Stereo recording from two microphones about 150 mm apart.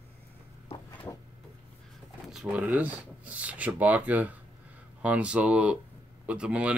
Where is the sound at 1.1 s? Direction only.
20° left (ahead or behind).